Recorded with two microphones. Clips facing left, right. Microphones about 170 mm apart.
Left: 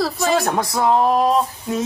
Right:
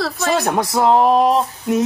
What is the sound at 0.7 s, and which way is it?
Male singing, 25° right (ahead or behind).